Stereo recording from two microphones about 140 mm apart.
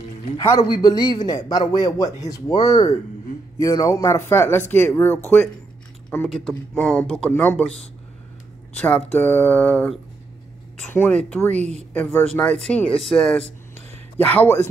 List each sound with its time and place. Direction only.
0.7 s a man's voice: 30° left (ahead or behind)
6.2 s speech: centre (ahead or behind)
8.7 s speech: 10° left (ahead or behind)
13.7 s a sound: 15° left (ahead or behind)